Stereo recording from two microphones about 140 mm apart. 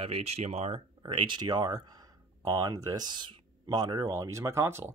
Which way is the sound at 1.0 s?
35° right (ahead or behind).